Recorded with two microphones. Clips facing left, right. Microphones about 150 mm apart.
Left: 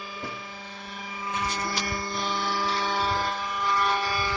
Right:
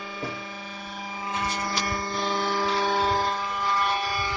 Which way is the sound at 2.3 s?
45° right (ahead or behind).